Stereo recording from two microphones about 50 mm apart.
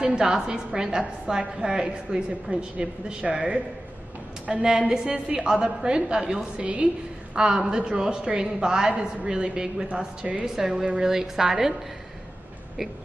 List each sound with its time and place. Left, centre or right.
0.0 s a woman's voice: centre